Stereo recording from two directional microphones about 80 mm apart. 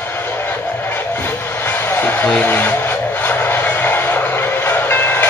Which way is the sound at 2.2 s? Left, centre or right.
Left.